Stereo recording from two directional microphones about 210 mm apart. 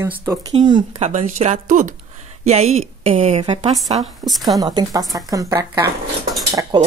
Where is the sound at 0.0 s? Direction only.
15° right (ahead or behind).